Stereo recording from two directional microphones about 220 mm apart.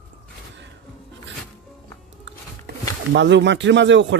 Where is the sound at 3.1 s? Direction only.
55° right (ahead or behind).